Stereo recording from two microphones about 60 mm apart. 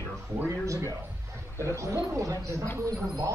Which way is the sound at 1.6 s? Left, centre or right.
Right.